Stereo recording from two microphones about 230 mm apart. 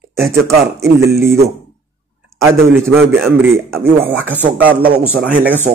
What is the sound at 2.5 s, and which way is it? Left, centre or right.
Speech, centre.